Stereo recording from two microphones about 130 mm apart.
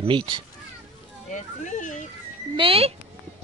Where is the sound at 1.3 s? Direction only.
70° left (ahead or behind).